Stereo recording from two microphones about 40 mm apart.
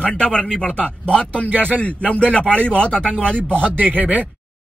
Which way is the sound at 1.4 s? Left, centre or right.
Left.